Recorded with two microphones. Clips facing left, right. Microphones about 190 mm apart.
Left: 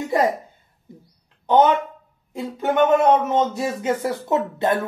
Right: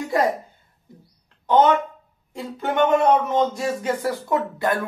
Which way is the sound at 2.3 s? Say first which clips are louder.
Left 3 dB; 15° left (ahead or behind).